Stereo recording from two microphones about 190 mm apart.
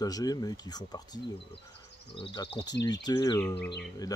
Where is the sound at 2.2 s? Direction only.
25° left (ahead or behind).